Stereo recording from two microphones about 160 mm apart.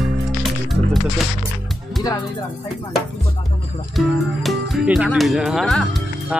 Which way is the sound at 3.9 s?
Centre (ahead or behind).